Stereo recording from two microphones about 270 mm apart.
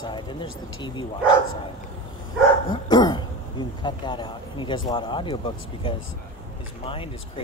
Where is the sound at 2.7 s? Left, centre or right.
Centre.